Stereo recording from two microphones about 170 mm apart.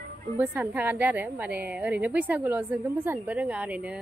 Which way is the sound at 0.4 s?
10° right (ahead or behind).